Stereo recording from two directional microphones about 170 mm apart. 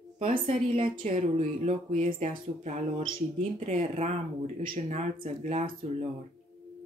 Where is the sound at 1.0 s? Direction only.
45° right (ahead or behind).